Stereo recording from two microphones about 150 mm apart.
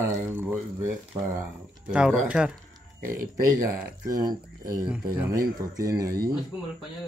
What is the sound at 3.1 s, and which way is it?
Speech, 75° right (ahead or behind).